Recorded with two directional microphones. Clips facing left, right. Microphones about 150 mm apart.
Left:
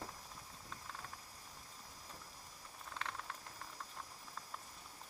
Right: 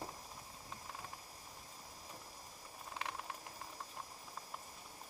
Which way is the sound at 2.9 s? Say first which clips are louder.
Right 1 dB; 15° right (ahead or behind).